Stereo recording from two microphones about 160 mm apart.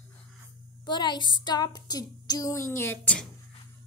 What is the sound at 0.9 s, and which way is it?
Speech, 25° left (ahead or behind).